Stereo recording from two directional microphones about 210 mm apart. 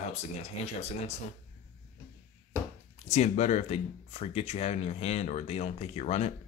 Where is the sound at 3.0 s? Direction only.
35° left (ahead or behind).